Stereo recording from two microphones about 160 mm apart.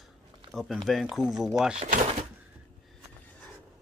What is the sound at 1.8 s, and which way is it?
Speech, 55° right (ahead or behind).